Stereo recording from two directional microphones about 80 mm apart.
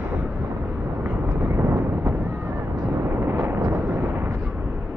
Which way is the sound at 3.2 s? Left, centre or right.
Right.